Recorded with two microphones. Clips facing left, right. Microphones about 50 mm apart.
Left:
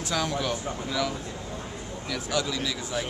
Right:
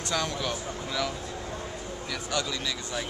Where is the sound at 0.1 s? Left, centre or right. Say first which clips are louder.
Left 2 dB; centre.